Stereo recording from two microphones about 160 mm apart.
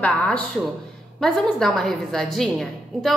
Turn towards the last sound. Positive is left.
turn(degrees=0)  # may be behind; listen again after turning